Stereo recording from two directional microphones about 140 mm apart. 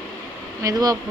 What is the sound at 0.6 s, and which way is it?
Speech, 25° right (ahead or behind).